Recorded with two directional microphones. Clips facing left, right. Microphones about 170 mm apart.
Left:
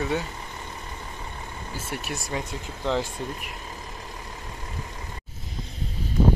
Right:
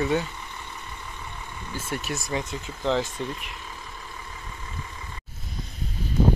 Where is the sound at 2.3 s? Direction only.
Centre (ahead or behind).